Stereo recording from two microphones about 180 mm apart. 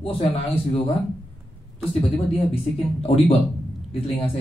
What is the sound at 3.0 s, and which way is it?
Speech, 35° left (ahead or behind).